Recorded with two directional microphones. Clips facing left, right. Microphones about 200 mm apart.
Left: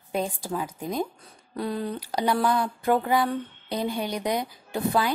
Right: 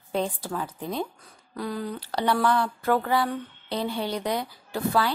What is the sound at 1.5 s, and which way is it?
Speech, 25° left (ahead or behind).